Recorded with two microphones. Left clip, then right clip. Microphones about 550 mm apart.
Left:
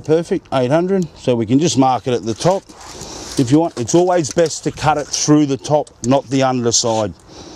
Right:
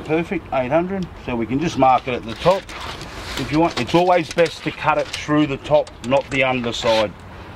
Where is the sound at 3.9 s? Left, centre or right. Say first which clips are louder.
Left 3 dB; left.